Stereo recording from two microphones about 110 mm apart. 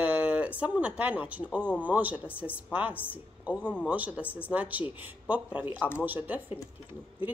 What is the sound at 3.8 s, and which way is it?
A woman's voice, 15° right (ahead or behind).